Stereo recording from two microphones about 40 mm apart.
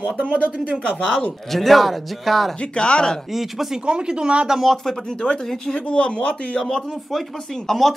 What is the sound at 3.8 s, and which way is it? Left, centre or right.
Speech, right.